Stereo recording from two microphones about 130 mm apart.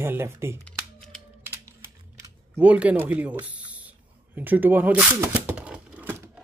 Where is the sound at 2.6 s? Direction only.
10° right (ahead or behind).